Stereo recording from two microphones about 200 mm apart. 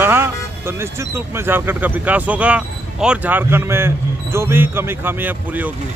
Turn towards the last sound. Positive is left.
turn(degrees=-10)  # may be behind; listen again after turning